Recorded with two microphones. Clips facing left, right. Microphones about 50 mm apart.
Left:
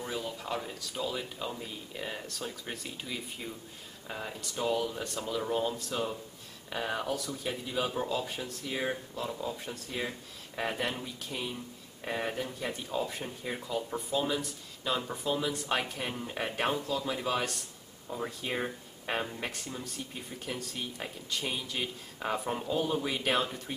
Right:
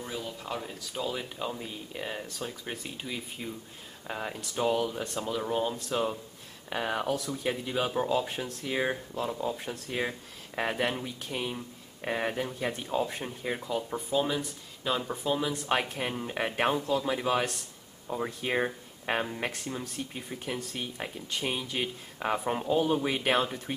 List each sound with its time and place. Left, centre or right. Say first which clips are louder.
0.0 s speech: left 1 dB; centre
4.1 s speech: right 3 dB; right
20.8 s speech: right 2 dB; centre